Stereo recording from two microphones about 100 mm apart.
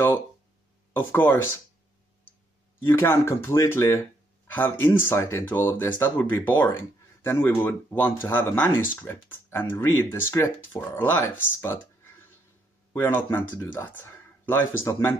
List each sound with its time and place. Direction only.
0.9 s speech: 20° left (ahead or behind)
2.8 s speech: 25° left (ahead or behind)